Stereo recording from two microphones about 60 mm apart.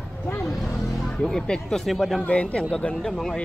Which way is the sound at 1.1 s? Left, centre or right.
Centre.